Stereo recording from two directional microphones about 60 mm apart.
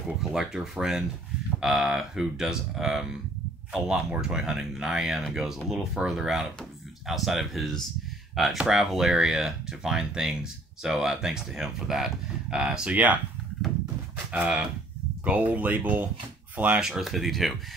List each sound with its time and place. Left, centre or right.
0.2 s speech: centre
12.9 s speech: right
14.3 s speech: centre
16.8 s speech: centre